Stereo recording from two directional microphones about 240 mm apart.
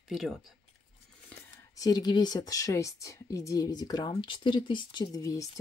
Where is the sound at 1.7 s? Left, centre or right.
Centre.